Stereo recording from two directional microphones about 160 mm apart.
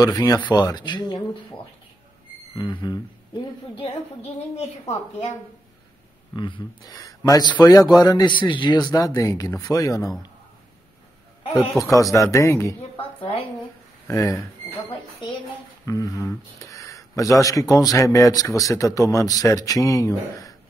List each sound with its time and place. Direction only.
0.0 s speech: 25° left (ahead or behind)
2.5 s speech: 25° left (ahead or behind)
6.3 s speech: 30° left (ahead or behind)
11.8 s speech: 20° left (ahead or behind)
14.0 s speech: 20° left (ahead or behind)
15.8 s speech: 20° left (ahead or behind)